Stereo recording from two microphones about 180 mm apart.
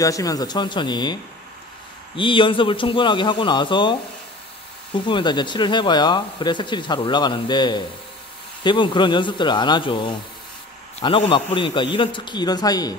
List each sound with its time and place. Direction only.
0.0 s speech: 20° left (ahead or behind)
2.1 s speech: 25° left (ahead or behind)
4.9 s speech: 25° left (ahead or behind)